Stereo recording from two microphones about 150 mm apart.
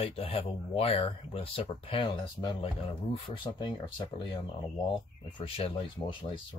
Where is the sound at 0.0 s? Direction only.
40° left (ahead or behind).